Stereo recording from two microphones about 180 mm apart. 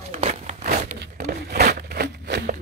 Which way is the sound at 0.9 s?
65° right (ahead or behind).